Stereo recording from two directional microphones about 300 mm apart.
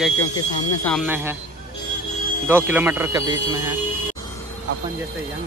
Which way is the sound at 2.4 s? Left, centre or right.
Centre.